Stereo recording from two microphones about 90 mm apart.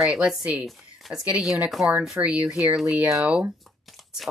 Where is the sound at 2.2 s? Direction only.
15° right (ahead or behind).